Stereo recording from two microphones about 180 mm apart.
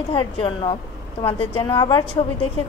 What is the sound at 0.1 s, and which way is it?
A woman's voice, 30° left (ahead or behind).